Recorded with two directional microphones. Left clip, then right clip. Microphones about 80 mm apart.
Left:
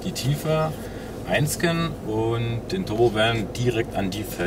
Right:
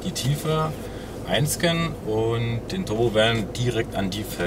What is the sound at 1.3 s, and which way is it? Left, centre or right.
Speech, right.